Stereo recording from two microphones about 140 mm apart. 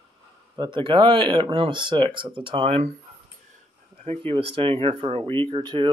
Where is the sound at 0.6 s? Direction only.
35° right (ahead or behind).